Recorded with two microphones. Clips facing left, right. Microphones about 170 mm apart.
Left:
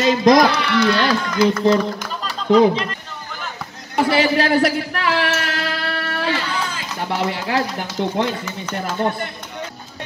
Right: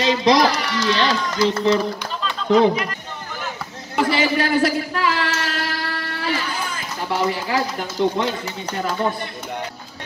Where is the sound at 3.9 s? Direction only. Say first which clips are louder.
Left 2 dB; 65° left (ahead or behind).